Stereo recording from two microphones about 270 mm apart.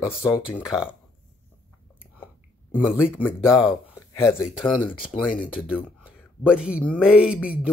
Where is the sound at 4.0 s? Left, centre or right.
Centre.